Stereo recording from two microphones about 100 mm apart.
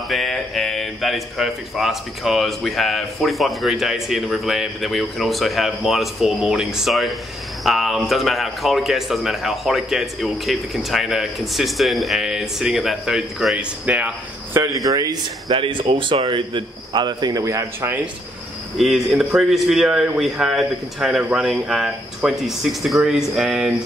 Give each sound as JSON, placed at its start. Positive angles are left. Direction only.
{"t": 0.1, "sound": "a man's voice", "side_deg": 0}
{"t": 13.8, "sound": "speech", "side_deg": -15}
{"t": 14.6, "sound": "speech", "side_deg": -30}
{"t": 15.5, "sound": "speech", "side_deg": -55}
{"t": 18.8, "sound": "a man's voice", "side_deg": 0}
{"t": 21.2, "sound": "speech", "side_deg": -15}
{"t": 21.5, "sound": "a man's voice", "side_deg": -5}